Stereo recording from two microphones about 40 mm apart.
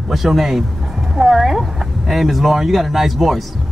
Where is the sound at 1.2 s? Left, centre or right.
Centre.